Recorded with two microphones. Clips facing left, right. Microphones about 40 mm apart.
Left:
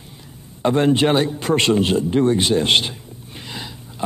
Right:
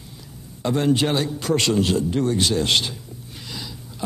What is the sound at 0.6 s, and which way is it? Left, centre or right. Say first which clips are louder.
A man's voice: left 4 dB; left.